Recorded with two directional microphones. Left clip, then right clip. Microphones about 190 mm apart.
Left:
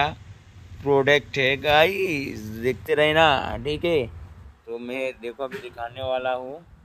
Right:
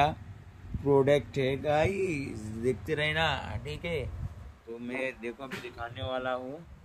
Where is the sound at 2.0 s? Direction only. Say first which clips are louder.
Left 7 dB; 90° left.